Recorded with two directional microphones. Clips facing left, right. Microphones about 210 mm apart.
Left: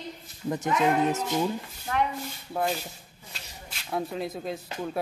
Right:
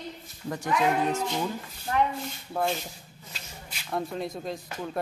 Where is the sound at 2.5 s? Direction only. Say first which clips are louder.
Even; 5° left (ahead or behind).